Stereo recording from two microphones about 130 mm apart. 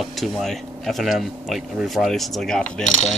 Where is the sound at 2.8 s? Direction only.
60° left (ahead or behind).